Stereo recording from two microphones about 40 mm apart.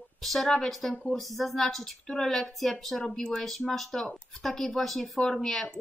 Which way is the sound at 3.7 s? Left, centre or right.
Centre.